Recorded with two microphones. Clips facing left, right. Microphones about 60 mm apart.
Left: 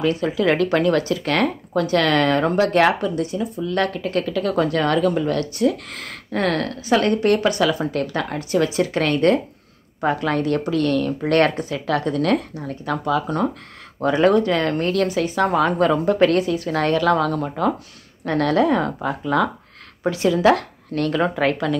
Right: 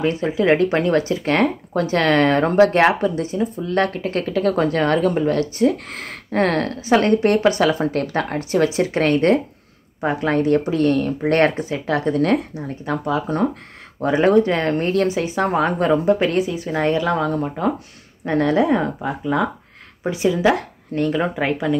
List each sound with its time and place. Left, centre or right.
0.0 s a woman's voice: right
16.2 s a woman's voice: centre